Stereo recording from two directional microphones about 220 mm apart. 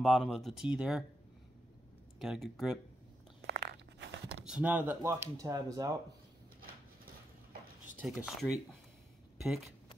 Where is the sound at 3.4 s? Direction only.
50° right (ahead or behind).